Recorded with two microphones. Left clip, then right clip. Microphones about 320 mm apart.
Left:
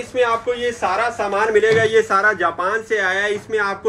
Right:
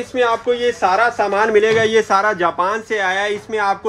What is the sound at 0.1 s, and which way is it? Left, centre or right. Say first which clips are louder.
A man's voice: right 2 dB; right.